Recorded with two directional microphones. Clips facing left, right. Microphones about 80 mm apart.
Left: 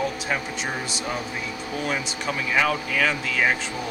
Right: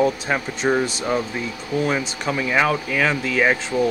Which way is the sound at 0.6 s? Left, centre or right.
Right.